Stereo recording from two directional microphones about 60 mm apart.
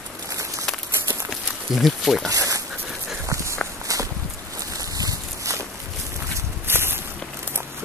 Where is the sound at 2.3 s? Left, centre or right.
Right.